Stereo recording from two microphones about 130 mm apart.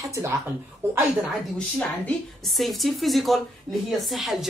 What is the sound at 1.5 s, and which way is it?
A woman's voice, 10° left (ahead or behind).